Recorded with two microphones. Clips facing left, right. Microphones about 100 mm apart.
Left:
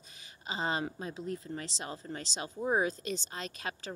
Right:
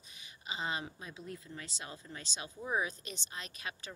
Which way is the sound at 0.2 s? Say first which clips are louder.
Left 5 dB; 40° left (ahead or behind).